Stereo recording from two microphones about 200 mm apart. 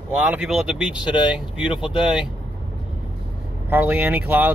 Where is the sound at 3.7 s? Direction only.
10° right (ahead or behind).